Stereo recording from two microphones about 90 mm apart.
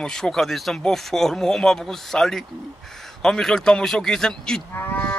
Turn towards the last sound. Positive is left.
turn(degrees=25)  # may be behind; listen again after turning